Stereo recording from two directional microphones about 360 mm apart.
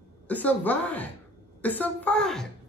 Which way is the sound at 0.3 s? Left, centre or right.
Centre.